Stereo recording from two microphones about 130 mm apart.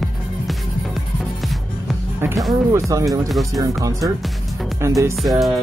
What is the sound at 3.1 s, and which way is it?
Speech, centre (ahead or behind).